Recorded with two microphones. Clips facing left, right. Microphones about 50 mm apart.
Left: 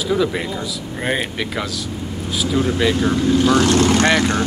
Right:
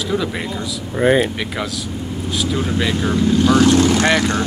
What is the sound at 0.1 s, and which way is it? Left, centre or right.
Speech, centre.